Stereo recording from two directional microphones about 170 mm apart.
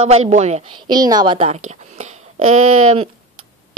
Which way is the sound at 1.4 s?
40° right (ahead or behind).